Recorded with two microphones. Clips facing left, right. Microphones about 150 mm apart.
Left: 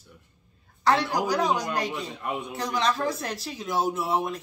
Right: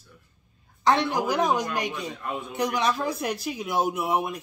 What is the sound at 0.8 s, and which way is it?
Speech, 20° right (ahead or behind).